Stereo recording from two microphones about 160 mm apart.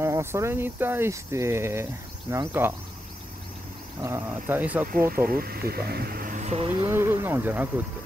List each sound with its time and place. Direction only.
0.0 s speech: 15° right (ahead or behind)
4.0 s speech: 15° right (ahead or behind)
5.1 s speech: 65° right (ahead or behind); by 6.9 s 40° right (ahead or behind)
6.9 s speech: 15° right (ahead or behind)